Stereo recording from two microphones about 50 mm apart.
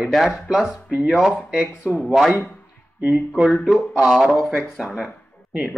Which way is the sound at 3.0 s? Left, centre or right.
Right.